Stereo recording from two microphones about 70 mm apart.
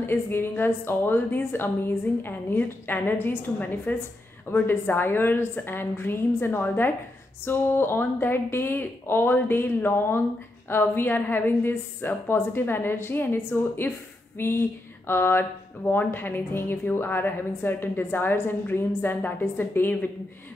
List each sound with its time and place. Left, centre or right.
0.0 s speech: left